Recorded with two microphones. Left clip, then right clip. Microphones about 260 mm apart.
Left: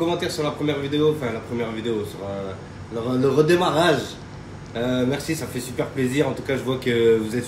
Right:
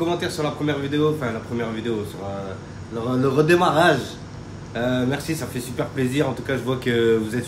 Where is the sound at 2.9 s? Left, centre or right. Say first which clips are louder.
Left 1 dB; centre.